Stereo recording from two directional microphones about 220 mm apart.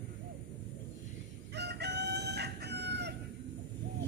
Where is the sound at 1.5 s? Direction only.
50° right (ahead or behind).